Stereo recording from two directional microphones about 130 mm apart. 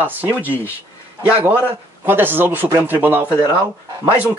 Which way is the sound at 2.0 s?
15° right (ahead or behind).